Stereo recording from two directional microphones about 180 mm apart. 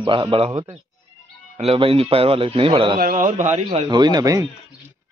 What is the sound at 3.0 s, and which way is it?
Speech, 50° right (ahead or behind).